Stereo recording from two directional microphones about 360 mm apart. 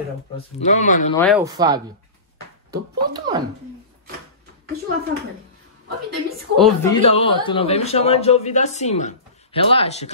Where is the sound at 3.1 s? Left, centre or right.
Centre.